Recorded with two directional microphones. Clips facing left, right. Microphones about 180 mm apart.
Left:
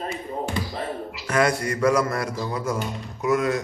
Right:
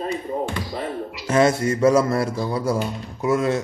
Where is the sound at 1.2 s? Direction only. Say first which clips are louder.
Right 4 dB; 25° right (ahead or behind).